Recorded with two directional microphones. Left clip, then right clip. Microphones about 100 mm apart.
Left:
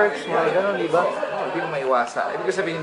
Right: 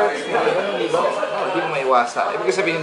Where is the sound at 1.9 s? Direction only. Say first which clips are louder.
Right 4 dB; 5° left (ahead or behind).